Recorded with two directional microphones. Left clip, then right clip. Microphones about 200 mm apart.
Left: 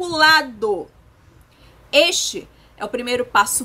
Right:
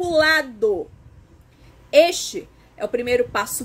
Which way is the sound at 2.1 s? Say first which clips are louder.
Left 5 dB; 15° left (ahead or behind).